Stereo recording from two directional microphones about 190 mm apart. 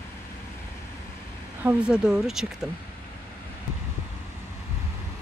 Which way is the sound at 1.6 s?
5° right (ahead or behind).